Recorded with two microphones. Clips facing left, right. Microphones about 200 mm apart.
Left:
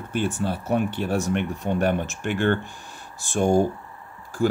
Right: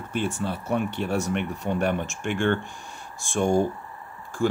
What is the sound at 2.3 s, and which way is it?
Speech, 35° left (ahead or behind).